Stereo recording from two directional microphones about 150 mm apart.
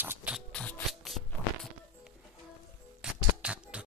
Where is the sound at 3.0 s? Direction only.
5° right (ahead or behind).